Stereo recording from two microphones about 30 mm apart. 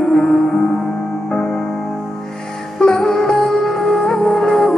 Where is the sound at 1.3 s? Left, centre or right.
Left.